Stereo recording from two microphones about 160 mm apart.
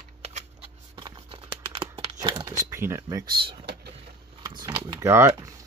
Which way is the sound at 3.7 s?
90° right.